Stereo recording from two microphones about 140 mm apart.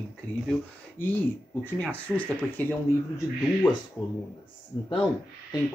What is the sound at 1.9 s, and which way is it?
Speech, 10° left (ahead or behind).